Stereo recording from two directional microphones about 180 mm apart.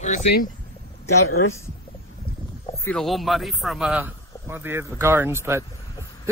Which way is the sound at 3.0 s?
Centre (ahead or behind).